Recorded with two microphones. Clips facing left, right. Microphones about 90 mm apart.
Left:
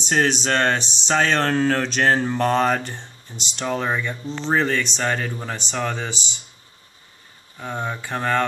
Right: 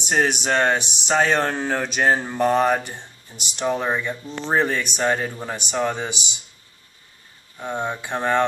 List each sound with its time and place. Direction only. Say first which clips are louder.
0.0 s speech: even; 15° right (ahead or behind)
7.6 s speech: right 1 dB; 15° right (ahead or behind)